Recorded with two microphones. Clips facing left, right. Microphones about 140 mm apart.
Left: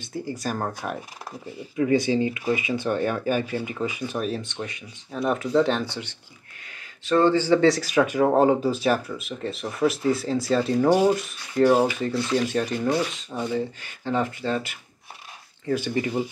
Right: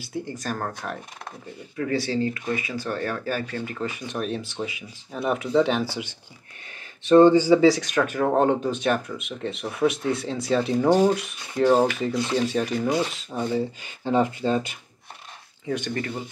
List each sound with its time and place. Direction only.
0.0 s speech: centre (ahead or behind)
0.3 s speech: 10° left (ahead or behind); by 7.6 s 15° right (ahead or behind)
7.6 s speech: centre (ahead or behind)
10.9 s speech: 10° left (ahead or behind)
11.1 s speech: centre (ahead or behind)
11.6 s speech: 10° left (ahead or behind)
12.0 s speech: 20° right (ahead or behind)
12.4 s speech: centre (ahead or behind)
12.8 s speech: 10° right (ahead or behind)
15.6 s speech: 5° left (ahead or behind)